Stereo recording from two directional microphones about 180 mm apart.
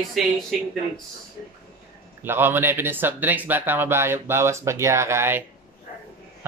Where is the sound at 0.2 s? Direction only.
Centre (ahead or behind).